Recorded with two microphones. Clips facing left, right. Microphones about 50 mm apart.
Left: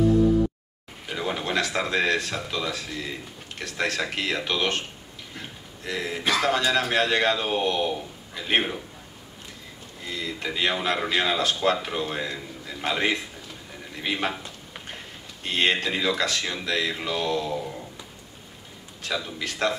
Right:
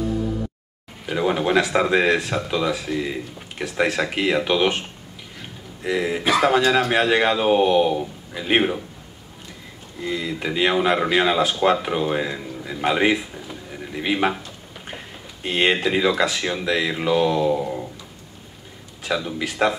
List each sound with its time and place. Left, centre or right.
1.1 s speech: centre
5.9 s speech: centre
10.0 s speech: centre
15.4 s speech: centre
19.0 s speech: centre